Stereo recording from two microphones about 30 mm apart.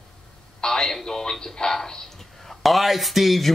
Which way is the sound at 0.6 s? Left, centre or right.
Centre.